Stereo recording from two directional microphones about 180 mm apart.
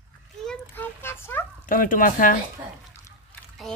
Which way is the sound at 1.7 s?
50° left (ahead or behind).